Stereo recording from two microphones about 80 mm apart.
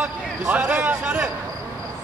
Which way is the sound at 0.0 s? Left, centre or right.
Centre.